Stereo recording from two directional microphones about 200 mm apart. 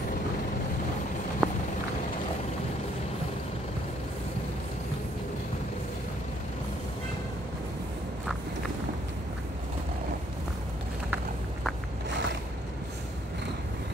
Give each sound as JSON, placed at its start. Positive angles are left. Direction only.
{"t": 1.4, "sound": "walk", "side_deg": 0}
{"t": 12.1, "sound": "boat", "side_deg": -60}